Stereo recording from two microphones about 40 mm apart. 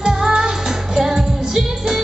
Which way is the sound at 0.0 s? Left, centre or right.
Centre.